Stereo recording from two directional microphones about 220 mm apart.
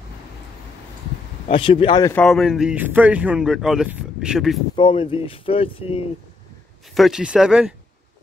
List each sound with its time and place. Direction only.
1.5 s speech: 25° left (ahead or behind)
2.1 s speech: centre (ahead or behind)
4.7 s speech: 20° left (ahead or behind)
7.0 s speech: centre (ahead or behind)